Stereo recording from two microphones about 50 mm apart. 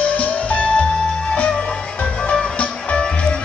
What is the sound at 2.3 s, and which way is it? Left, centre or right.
Music, centre.